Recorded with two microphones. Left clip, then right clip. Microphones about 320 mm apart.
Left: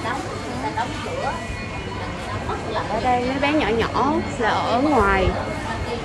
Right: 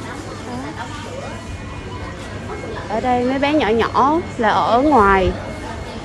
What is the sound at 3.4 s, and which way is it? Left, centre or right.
Speech, right.